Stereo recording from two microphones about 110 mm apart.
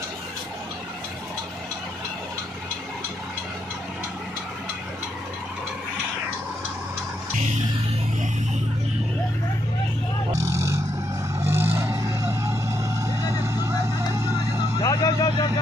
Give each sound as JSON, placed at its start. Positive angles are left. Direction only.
{"t": 10.4, "sound": "vehicle", "side_deg": -25}
{"t": 14.8, "sound": "vehicle", "side_deg": 35}